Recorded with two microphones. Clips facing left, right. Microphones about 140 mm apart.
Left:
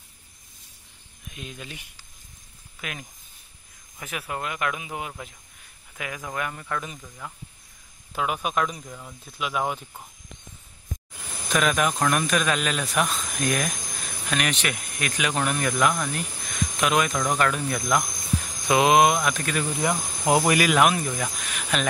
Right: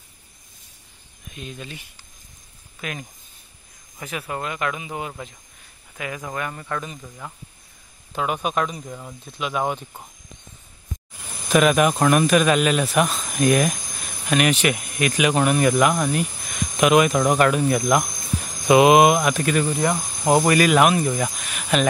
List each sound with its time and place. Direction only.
1.3 s speech: 10° left (ahead or behind)
8.2 s speech: centre (ahead or behind)
8.8 s speech: 20° right (ahead or behind)
9.4 s speech: 5° left (ahead or behind)
11.5 s speech: 10° right (ahead or behind)
19.8 s speech: 5° left (ahead or behind)